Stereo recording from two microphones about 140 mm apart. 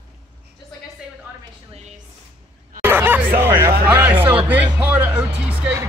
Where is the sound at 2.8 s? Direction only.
15° right (ahead or behind).